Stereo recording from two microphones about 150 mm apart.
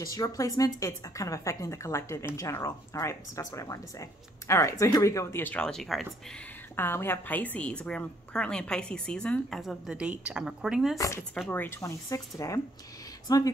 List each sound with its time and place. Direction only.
0.0 s speech: 20° left (ahead or behind); by 6.0 s centre (ahead or behind)
6.8 s a woman's voice: 15° left (ahead or behind); by 11.0 s 5° right (ahead or behind)
11.0 s speech: 20° left (ahead or behind)
11.3 s speech: 10° left (ahead or behind); by 13.4 s 25° left (ahead or behind)